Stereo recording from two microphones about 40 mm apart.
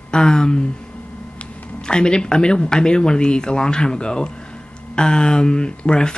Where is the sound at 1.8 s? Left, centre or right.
Left.